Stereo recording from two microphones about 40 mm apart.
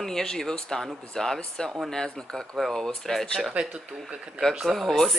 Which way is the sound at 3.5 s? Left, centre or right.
Right.